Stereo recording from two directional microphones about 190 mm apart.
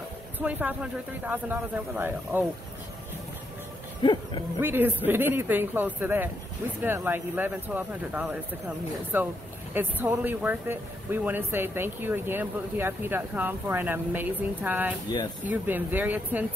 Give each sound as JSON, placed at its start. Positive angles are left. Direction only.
{"t": 0.4, "sound": "speech", "side_deg": -10}
{"t": 4.0, "sound": "speech", "side_deg": 25}
{"t": 4.6, "sound": "speech", "side_deg": -10}